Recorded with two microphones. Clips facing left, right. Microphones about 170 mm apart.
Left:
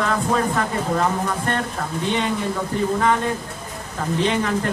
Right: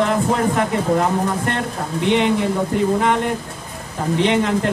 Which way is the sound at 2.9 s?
20° right (ahead or behind).